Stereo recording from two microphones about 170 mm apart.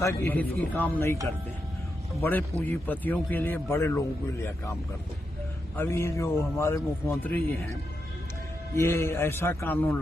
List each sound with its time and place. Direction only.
0.0 s a man's voice: 15° left (ahead or behind)
2.1 s a man's voice: 10° left (ahead or behind)
5.8 s a man's voice: 15° left (ahead or behind)